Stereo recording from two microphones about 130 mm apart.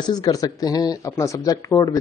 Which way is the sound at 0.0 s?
30° left (ahead or behind).